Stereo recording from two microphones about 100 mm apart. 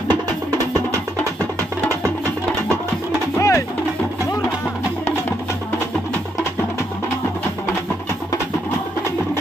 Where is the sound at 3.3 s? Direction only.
30° left (ahead or behind).